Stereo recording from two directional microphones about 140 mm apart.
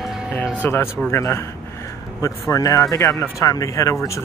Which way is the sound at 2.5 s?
25° left (ahead or behind).